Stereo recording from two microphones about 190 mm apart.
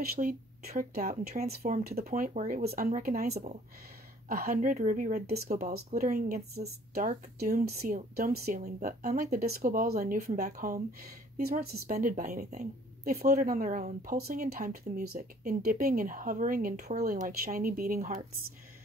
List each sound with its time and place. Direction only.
0.0 s a woman's voice: 50° right (ahead or behind)